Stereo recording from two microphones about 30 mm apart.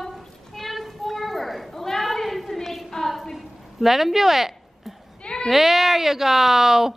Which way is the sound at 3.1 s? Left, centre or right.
Centre.